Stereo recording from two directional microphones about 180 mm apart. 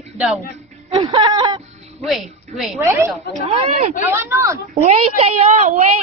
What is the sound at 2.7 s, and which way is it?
Speech, 15° right (ahead or behind).